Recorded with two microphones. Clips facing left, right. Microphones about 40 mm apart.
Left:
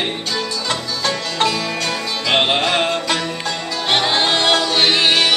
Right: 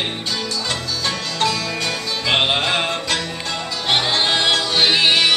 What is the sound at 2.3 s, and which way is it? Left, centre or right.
Music, centre.